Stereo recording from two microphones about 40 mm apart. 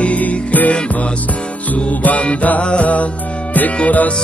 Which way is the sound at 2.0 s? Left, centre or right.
Left.